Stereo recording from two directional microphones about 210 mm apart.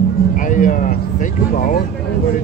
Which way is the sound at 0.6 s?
40° left (ahead or behind).